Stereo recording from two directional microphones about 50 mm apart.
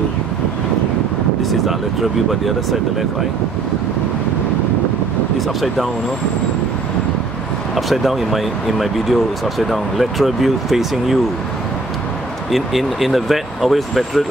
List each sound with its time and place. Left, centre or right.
1.4 s speech: centre
7.7 s speech: centre
12.4 s speech: centre